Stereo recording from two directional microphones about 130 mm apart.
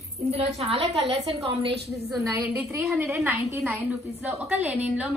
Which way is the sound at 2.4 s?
15° right (ahead or behind).